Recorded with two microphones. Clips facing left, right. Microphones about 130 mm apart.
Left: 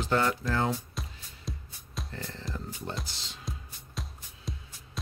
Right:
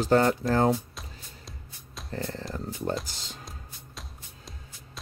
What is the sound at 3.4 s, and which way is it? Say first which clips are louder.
Music: left 3 dB; centre (ahead or behind).